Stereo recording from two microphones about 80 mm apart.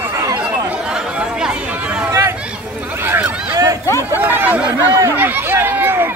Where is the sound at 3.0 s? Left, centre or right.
Right.